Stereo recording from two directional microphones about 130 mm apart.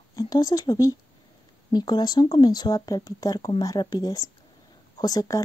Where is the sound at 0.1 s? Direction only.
30° left (ahead or behind).